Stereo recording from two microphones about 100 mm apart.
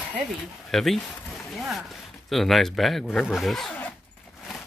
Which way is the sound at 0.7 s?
Centre (ahead or behind).